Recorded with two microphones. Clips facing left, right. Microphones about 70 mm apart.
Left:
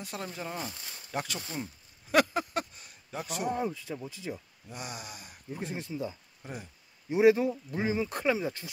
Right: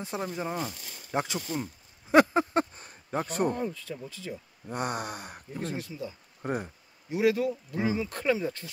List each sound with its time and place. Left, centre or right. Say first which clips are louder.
0.0 s speech: right 5 dB; right
2.0 s a sound: right 5 dB; right
3.5 s speech: left 1 dB; centre
4.6 s a sound: right 10 dB; right
5.6 s speech: right 3 dB; centre
5.9 s speech: left 2 dB; left
6.4 s a sound: right 10 dB; right
7.1 s speech: left 3 dB; left
8.2 s speech: right 1 dB; centre